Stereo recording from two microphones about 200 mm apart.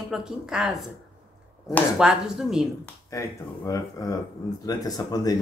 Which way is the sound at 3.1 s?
15° left (ahead or behind).